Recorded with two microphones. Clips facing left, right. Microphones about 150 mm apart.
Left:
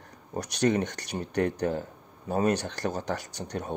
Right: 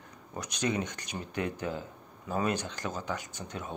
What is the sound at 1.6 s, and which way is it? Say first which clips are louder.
Speech: left 7 dB; 55° left (ahead or behind).